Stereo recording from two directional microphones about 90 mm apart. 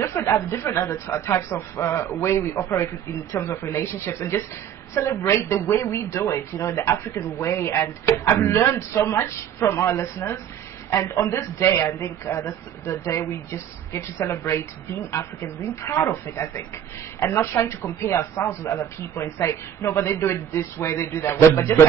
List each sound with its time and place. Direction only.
0.0 s a woman's voice: 30° left (ahead or behind)